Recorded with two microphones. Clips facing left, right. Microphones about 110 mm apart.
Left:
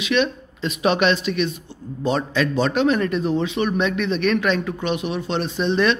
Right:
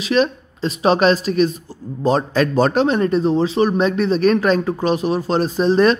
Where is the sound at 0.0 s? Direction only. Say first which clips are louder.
Right 3 dB; 35° right (ahead or behind).